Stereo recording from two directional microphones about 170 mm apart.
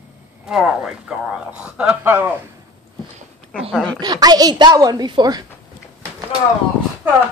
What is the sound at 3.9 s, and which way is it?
Speech, 25° right (ahead or behind).